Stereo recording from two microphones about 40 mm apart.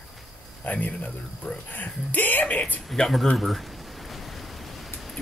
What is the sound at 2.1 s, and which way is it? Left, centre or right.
Speech, left.